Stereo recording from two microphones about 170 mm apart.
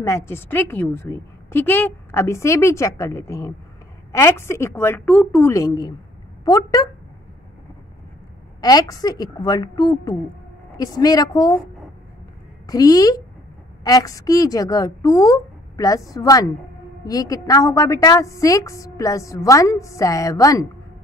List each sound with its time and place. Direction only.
0.0 s a woman's voice: 15° left (ahead or behind)
8.5 s a woman's voice: 20° left (ahead or behind)
12.6 s a woman's voice: 20° left (ahead or behind)